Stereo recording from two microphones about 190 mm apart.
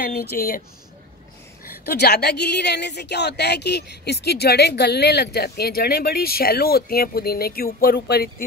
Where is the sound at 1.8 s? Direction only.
60° left (ahead or behind).